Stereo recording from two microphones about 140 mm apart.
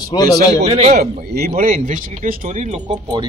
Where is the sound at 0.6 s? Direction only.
50° right (ahead or behind).